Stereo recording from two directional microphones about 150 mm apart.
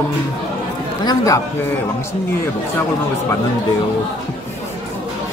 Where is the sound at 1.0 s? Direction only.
25° left (ahead or behind).